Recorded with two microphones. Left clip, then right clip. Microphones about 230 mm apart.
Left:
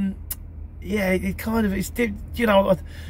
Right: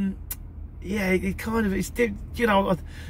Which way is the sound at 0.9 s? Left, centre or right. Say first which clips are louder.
Left 2 dB; centre.